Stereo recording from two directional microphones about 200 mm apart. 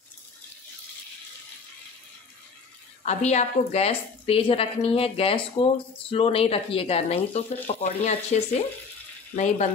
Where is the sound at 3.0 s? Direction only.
35° left (ahead or behind).